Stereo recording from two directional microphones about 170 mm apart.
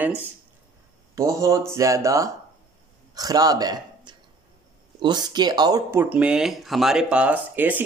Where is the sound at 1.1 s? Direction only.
20° right (ahead or behind).